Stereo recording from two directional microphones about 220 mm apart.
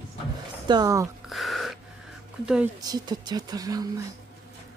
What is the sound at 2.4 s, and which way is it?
Speech, 5° right (ahead or behind).